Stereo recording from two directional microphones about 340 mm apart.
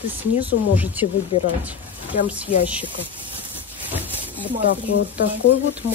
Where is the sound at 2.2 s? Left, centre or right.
Centre.